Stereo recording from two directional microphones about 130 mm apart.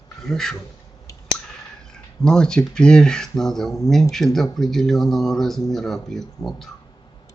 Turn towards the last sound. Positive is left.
turn(degrees=5)  # may be behind; listen again after turning